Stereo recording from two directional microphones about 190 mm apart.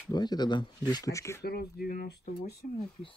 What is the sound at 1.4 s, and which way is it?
Speech, 55° left (ahead or behind).